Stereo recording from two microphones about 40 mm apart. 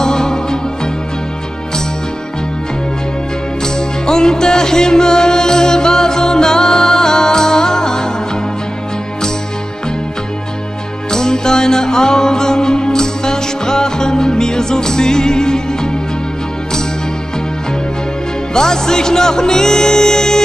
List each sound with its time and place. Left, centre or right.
0.0 s music: centre
3.6 s music: centre
11.1 s music: centre
18.5 s music: centre